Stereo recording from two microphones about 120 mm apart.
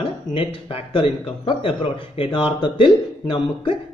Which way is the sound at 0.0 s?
50° left (ahead or behind).